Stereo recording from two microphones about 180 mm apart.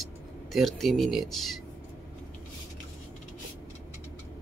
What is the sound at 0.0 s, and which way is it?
Speech, centre (ahead or behind).